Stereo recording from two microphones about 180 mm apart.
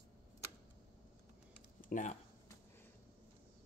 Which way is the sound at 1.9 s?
45° left (ahead or behind).